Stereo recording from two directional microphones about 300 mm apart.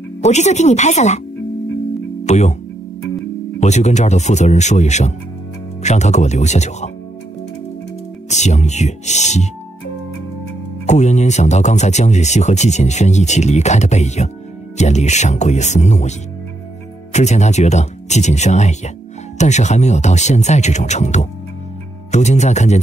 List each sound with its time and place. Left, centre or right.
0.2 s speech: left
2.2 s speech: left
3.5 s speech: left
8.3 s speech: left
10.9 s speech: left